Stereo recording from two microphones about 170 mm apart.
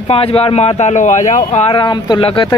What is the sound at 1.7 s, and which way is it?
Speech, 25° left (ahead or behind).